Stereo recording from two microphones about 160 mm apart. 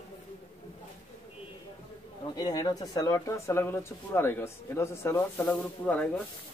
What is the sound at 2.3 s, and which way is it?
Speech, 25° left (ahead or behind).